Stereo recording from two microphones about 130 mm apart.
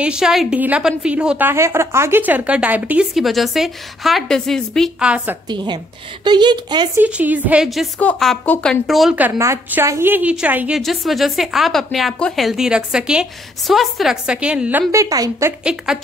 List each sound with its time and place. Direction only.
0.0 s a woman's voice: 5° right (ahead or behind)
5.0 s a woman's voice: 10° right (ahead or behind)
5.5 s speech: 35° right (ahead or behind)
7.0 s a woman's voice: 10° right (ahead or behind)
9.4 s a woman's voice: 20° right (ahead or behind)
10.8 s a woman's voice: centre (ahead or behind)
15.0 s a woman's voice: 25° right (ahead or behind)
15.6 s a woman's voice: 5° right (ahead or behind)